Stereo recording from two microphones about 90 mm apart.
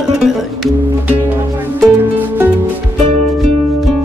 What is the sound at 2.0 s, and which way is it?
Music, 25° right (ahead or behind).